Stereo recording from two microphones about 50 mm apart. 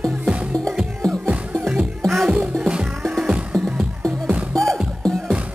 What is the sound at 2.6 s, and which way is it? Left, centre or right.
Music, centre.